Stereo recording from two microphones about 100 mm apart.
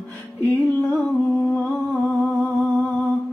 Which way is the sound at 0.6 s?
15° left (ahead or behind).